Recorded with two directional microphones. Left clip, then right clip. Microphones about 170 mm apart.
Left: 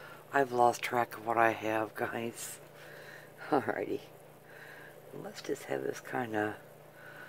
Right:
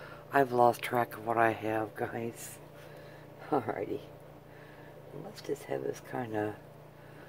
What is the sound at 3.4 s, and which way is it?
Speech, 40° left (ahead or behind).